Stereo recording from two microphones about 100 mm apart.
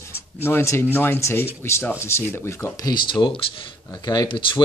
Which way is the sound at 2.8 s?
50° left (ahead or behind).